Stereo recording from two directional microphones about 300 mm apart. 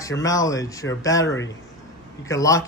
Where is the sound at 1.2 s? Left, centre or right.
Left.